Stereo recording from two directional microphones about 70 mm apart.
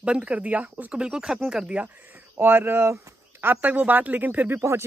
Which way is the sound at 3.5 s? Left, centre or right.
Right.